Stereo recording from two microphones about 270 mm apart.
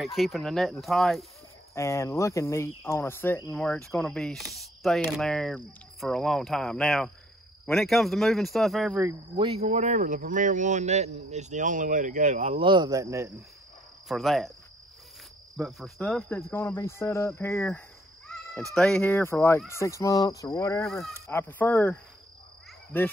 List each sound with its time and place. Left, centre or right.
0.0 s speech: centre
1.8 s cricket: centre
5.9 s speech: centre
9.4 s speech: right
14.0 s speech: centre
15.5 s cricket: centre